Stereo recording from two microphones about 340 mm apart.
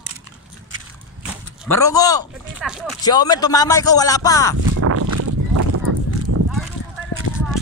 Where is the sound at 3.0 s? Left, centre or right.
Centre.